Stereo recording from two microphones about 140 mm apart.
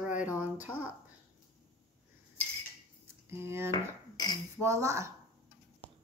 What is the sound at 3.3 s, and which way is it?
Speech, 15° right (ahead or behind).